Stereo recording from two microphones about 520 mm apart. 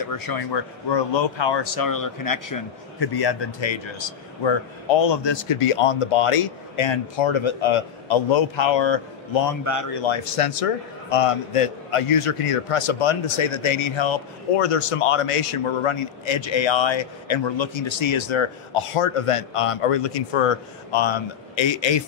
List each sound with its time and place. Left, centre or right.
0.0 s speech: left
9.7 s speech: left
10.0 s a man's voice: left